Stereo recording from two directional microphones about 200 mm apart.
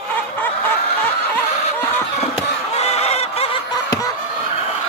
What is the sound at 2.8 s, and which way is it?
Chicken, 30° left (ahead or behind).